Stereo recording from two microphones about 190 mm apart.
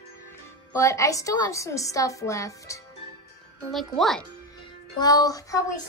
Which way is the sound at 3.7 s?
Centre (ahead or behind).